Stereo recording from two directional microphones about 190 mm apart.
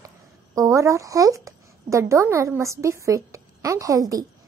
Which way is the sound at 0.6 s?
15° right (ahead or behind).